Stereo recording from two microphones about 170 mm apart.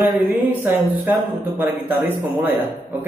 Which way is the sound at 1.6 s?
10° right (ahead or behind).